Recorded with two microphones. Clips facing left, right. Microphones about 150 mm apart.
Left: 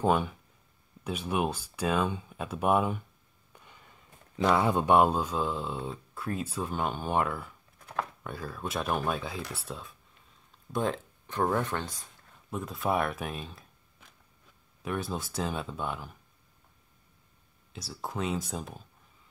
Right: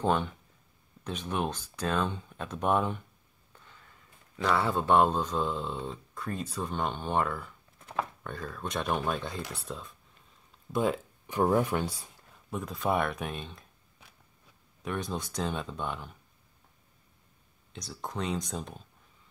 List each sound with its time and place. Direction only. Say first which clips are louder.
0.0 s speech: left 2 dB; 10° left (ahead or behind)
3.5 s a sound: left 1 dB; 15° left (ahead or behind)
4.4 s speech: left 3 dB; 15° left (ahead or behind); by 12.1 s 10° right (ahead or behind)
12.4 s speech: even; centre (ahead or behind)
14.8 s speech: left 1 dB; 5° left (ahead or behind)
17.7 s speech: left 1 dB; 5° left (ahead or behind)